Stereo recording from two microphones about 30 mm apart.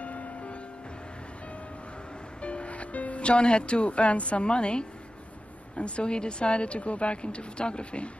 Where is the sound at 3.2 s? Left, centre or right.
Left.